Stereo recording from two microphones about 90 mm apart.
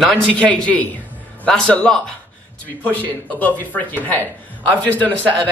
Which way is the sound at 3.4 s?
20° left (ahead or behind).